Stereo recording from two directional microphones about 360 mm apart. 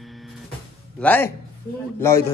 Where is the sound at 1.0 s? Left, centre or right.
Centre.